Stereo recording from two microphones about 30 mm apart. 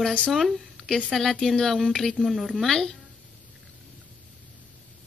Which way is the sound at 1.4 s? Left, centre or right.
Centre.